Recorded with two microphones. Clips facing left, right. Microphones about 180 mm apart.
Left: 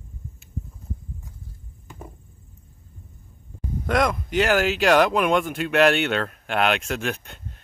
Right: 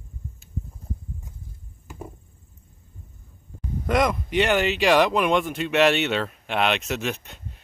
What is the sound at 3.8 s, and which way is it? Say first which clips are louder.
Speech: even; centre (ahead or behind).